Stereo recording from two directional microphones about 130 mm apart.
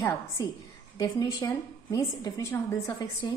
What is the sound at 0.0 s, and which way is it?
A woman's voice, 20° left (ahead or behind).